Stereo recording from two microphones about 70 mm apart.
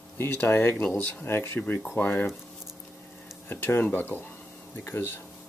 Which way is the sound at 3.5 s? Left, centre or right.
Left.